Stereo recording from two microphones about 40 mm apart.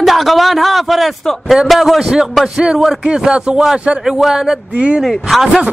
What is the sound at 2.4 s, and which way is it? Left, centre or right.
Speech, right.